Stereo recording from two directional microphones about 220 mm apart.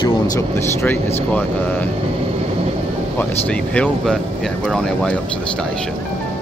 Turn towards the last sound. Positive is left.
turn(degrees=5)  # may be behind; listen again after turning